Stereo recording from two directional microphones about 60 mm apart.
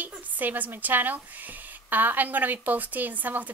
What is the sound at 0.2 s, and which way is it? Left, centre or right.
A woman's voice, right.